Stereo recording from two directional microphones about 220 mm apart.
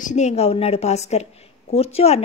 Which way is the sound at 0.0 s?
30° left (ahead or behind).